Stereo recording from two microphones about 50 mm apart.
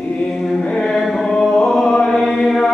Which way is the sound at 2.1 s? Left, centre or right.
Centre.